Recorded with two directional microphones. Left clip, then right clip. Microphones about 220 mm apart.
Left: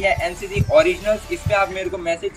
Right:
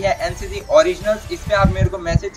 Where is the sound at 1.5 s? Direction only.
10° left (ahead or behind).